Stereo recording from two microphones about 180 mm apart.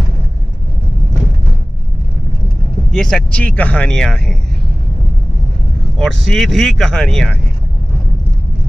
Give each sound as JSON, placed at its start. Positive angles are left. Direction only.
{"t": 2.9, "sound": "speech", "side_deg": 5}
{"t": 5.9, "sound": "speech", "side_deg": 5}